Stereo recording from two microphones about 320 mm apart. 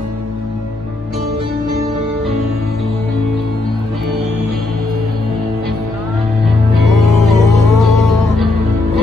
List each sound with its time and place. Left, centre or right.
7.0 s music: centre